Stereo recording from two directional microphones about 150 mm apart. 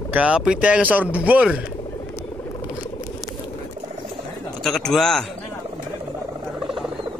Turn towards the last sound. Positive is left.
turn(degrees=5)  # may be behind; listen again after turning